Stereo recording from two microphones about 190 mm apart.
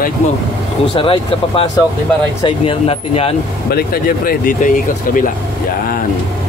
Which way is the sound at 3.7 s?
50° left (ahead or behind).